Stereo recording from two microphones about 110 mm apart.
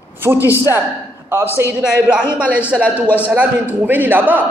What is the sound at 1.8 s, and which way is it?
A man's voice, 10° right (ahead or behind).